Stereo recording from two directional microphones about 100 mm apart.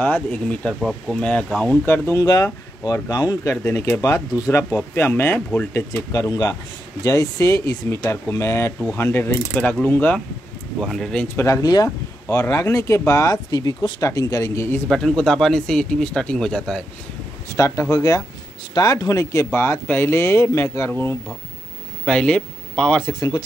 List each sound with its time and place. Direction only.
0.0 s speech: 15° left (ahead or behind)
0.7 s speech: centre (ahead or behind)
1.6 s speech: 15° left (ahead or behind)
2.2 s speech: 40° left (ahead or behind); by 10.1 s 20° left (ahead or behind)
10.8 s speech: 5° left (ahead or behind)
11.2 s speech: 30° left (ahead or behind); by 14.0 s 50° left (ahead or behind)
14.0 s speech: 35° left (ahead or behind)
14.9 s speech: 5° left (ahead or behind)
17.5 s speech: 30° left (ahead or behind)
22.0 s speech: 10° left (ahead or behind)